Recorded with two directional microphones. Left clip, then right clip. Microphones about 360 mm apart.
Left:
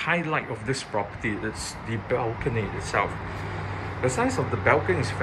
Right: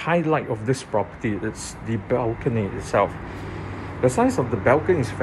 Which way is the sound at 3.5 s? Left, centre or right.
Right.